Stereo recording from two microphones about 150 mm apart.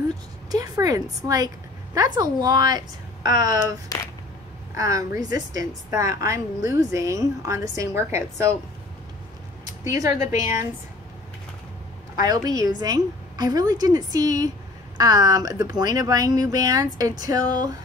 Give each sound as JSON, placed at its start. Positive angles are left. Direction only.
{"t": 0.5, "sound": "a woman's voice", "side_deg": -25}
{"t": 4.7, "sound": "a woman's voice", "side_deg": -20}
{"t": 9.8, "sound": "a woman's voice", "side_deg": -20}
{"t": 12.3, "sound": "a woman's voice", "side_deg": -25}